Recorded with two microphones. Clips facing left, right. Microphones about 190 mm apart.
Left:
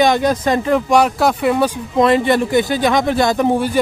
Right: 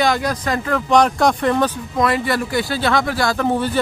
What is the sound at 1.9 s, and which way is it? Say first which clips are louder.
Speech: left 7 dB; 25° left (ahead or behind).